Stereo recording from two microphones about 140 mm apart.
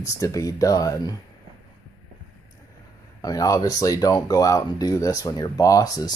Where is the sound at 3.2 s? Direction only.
25° left (ahead or behind).